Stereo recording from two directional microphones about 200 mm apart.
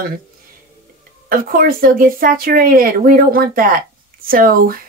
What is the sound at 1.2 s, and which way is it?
A woman's voice, 45° right (ahead or behind).